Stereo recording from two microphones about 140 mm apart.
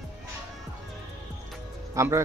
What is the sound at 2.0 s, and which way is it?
Speech, 25° right (ahead or behind).